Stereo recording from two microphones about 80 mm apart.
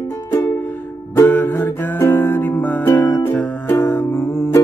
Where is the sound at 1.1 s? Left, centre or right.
Left.